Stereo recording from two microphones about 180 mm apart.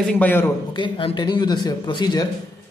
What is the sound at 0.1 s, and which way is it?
Speech, 10° left (ahead or behind).